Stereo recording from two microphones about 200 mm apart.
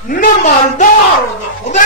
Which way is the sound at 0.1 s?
40° left (ahead or behind).